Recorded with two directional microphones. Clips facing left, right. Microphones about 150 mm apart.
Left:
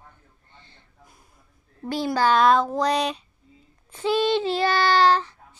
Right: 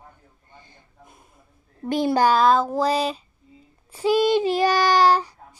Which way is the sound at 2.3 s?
Centre (ahead or behind).